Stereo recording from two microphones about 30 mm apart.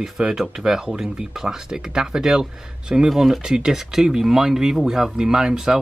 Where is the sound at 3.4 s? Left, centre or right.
Centre.